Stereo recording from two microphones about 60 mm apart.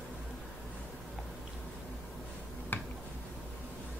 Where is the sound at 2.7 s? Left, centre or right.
Left.